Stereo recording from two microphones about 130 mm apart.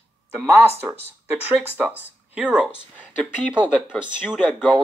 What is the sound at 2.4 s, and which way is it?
Speech, 10° right (ahead or behind).